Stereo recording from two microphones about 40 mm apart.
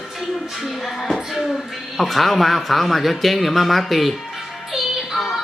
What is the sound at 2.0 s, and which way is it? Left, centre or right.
Speech, centre.